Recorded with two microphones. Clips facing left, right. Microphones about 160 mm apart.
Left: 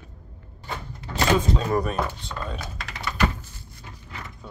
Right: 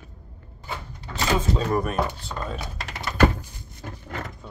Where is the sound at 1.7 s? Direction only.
5° right (ahead or behind).